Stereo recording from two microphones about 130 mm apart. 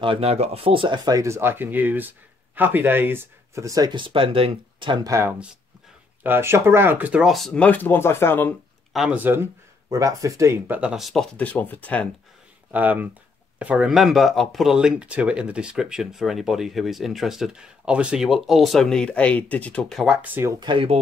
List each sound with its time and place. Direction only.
0.0 s speech: 45° right (ahead or behind)
6.2 s speech: 15° right (ahead or behind); by 8.5 s 15° left (ahead or behind)
8.9 s speech: 5° right (ahead or behind)
9.2 s speech: 20° right (ahead or behind)
10.8 s speech: 5° right (ahead or behind)
11.3 s speech: 10° left (ahead or behind)
12.7 s speech: 10° right (ahead or behind)
20.2 s speech: 15° right (ahead or behind)
20.6 s speech: 45° right (ahead or behind)